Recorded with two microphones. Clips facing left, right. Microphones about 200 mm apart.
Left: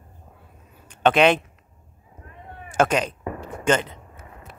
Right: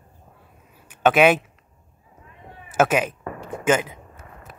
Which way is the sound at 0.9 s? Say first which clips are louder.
Right 1 dB; 5° right (ahead or behind).